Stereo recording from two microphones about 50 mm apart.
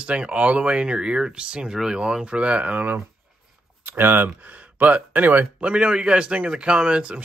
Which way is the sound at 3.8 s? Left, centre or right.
Right.